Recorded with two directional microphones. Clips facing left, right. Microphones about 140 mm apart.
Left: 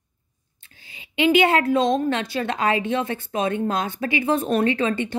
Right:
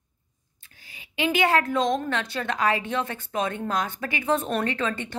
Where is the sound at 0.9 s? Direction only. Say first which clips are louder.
Left 7 dB; 20° left (ahead or behind).